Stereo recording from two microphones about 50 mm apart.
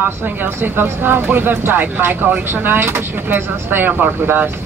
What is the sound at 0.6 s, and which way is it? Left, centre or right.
Speech, right.